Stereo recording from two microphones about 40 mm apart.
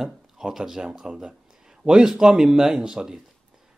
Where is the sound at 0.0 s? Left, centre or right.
Centre.